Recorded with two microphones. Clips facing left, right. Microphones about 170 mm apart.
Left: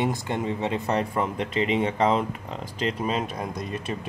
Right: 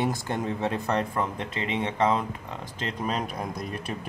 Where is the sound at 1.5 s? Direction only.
15° left (ahead or behind).